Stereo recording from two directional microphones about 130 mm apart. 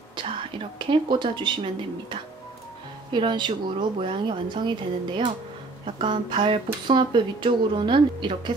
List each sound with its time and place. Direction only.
0.1 s speech: 40° right (ahead or behind)